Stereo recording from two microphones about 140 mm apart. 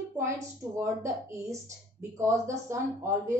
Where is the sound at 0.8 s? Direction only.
20° right (ahead or behind).